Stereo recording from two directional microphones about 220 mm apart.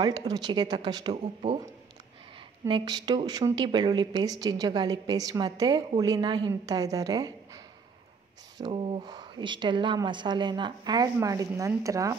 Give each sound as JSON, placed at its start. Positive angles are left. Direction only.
{"t": 0.0, "sound": "speech", "side_deg": -20}
{"t": 2.7, "sound": "a woman's voice", "side_deg": -20}
{"t": 8.5, "sound": "speech", "side_deg": -20}